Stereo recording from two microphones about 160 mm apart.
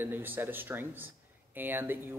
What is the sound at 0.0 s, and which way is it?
Speech, 15° right (ahead or behind).